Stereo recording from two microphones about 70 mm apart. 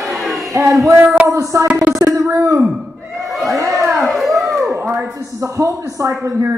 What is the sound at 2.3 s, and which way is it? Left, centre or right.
Speech, right.